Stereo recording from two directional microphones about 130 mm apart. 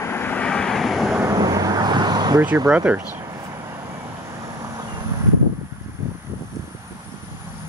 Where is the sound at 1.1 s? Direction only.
25° right (ahead or behind).